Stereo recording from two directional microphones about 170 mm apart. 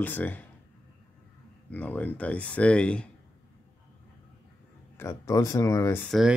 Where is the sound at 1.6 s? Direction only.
10° left (ahead or behind).